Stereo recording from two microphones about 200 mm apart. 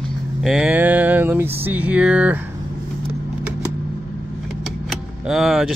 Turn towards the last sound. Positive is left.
turn(degrees=0)  # may be behind; listen again after turning